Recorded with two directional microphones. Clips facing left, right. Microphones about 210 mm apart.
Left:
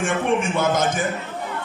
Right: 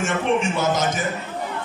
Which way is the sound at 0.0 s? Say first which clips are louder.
Even; 50° left (ahead or behind).